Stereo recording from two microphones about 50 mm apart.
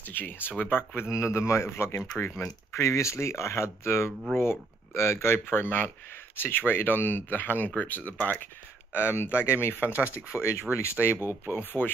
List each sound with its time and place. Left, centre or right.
0.0 s speech: left
2.1 s speech: left
2.4 s speech: left
8.9 s speech: left
9.8 s speech: right
10.3 s speech: left